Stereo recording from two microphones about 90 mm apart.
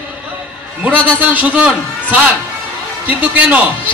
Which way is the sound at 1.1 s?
20° right (ahead or behind).